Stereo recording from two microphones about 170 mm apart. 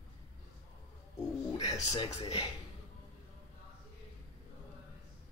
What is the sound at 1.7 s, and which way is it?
Speech, 20° left (ahead or behind).